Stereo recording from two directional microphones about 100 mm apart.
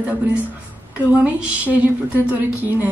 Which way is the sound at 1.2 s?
10° right (ahead or behind).